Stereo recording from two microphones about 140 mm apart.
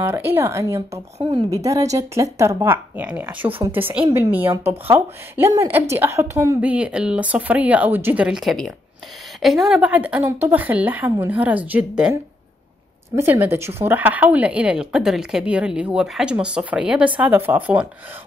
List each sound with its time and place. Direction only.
0.0 s a woman's voice: 15° right (ahead or behind)
6.6 s speech: 10° right (ahead or behind)
13.1 s speech: 15° right (ahead or behind)